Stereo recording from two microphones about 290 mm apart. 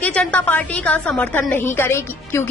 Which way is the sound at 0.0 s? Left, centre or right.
Centre.